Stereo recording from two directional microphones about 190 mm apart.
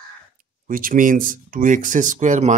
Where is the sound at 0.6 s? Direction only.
45° right (ahead or behind).